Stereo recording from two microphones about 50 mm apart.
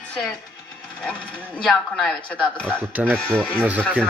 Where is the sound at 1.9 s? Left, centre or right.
Centre.